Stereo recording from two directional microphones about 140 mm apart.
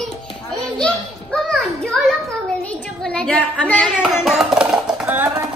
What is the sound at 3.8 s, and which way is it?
Music, 5° right (ahead or behind).